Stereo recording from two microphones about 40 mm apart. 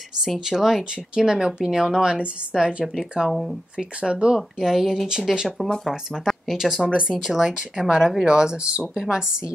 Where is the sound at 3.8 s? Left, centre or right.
Right.